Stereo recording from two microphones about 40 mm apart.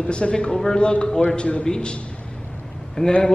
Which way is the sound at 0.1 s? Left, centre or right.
Left.